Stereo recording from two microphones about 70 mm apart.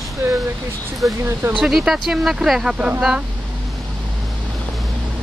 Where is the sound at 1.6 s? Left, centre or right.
Centre.